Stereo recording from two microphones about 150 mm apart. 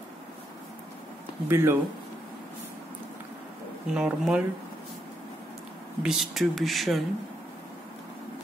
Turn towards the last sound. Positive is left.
turn(degrees=0)  # may be behind; listen again after turning